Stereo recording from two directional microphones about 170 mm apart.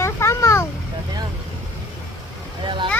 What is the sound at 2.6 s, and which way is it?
Vehicle, 30° right (ahead or behind).